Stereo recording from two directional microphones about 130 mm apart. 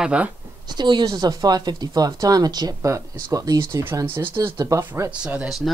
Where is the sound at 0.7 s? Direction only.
35° right (ahead or behind).